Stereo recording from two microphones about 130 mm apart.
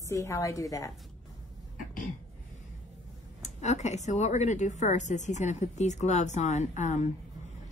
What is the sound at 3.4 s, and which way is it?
A woman's voice, 60° left (ahead or behind).